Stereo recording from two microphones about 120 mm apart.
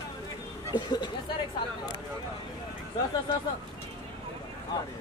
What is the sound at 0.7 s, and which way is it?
Speech, 35° left (ahead or behind).